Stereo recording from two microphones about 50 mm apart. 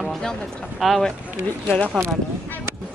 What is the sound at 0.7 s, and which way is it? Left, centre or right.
Speech, centre.